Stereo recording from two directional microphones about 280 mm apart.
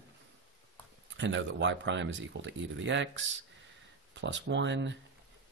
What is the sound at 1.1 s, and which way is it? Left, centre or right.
Speech, right.